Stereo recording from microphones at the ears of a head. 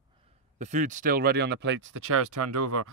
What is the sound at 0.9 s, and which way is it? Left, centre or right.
Speech, right.